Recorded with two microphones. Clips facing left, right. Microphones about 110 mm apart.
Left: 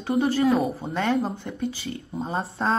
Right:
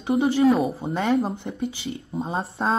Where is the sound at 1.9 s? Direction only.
Centre (ahead or behind).